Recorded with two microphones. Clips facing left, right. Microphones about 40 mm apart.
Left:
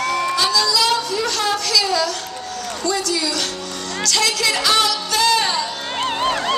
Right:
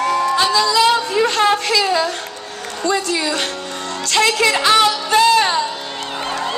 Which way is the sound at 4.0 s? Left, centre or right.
Right.